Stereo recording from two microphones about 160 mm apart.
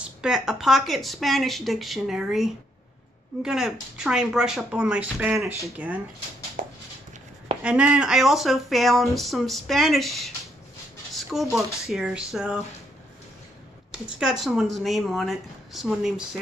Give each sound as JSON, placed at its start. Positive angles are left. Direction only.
{"t": 0.0, "sound": "speech", "side_deg": -5}
{"t": 6.6, "sound": "a sound", "side_deg": -60}
{"t": 7.6, "sound": "speech", "side_deg": -5}
{"t": 13.9, "sound": "speech", "side_deg": -5}